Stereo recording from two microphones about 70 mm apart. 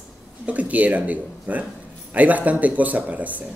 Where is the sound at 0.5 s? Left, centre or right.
Right.